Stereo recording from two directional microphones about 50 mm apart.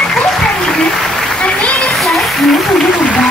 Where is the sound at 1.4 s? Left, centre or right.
Centre.